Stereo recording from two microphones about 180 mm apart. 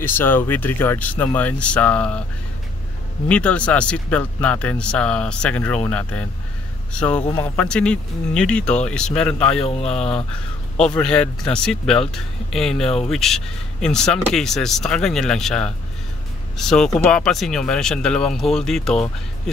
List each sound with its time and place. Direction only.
0.0 s speech: 10° left (ahead or behind)
3.3 s speech: 5° left (ahead or behind)
9.7 s speech: 35° left (ahead or behind)
11.0 s speech: 5° left (ahead or behind)